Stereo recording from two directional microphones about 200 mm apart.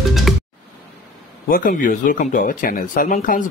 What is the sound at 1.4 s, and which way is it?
Speech, 45° left (ahead or behind).